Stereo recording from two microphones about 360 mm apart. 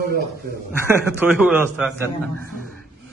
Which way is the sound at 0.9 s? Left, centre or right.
Centre.